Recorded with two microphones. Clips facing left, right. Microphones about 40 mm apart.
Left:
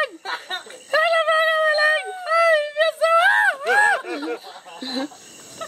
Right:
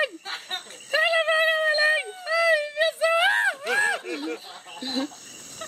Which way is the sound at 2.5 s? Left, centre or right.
Centre.